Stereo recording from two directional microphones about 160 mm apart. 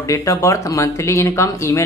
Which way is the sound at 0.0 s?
20° left (ahead or behind).